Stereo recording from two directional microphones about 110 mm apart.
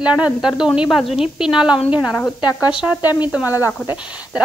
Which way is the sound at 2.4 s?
40° left (ahead or behind).